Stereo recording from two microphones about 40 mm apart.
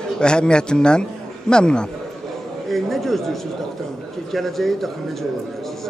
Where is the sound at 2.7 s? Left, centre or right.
Centre.